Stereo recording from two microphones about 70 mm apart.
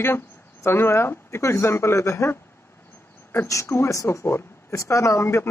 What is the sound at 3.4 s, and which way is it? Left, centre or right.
Speech, left.